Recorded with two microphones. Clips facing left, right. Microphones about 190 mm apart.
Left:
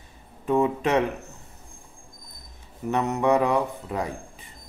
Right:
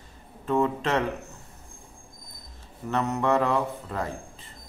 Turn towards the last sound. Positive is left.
turn(degrees=15)  # may be behind; listen again after turning